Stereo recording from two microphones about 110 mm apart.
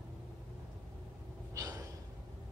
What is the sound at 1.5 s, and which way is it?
Snort, 35° right (ahead or behind).